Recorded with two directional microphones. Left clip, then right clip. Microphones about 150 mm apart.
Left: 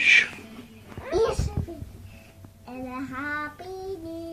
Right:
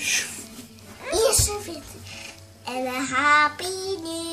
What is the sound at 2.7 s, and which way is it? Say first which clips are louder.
Child singing: right 9 dB; 40° right (ahead or behind).